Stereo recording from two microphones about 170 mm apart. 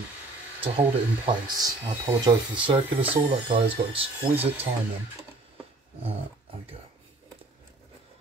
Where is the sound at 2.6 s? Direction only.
30° right (ahead or behind).